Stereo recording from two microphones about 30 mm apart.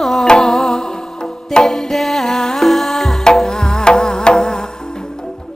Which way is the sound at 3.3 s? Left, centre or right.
Centre.